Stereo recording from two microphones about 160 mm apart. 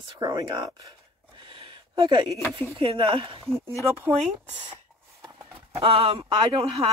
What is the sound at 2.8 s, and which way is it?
Speech, 30° right (ahead or behind).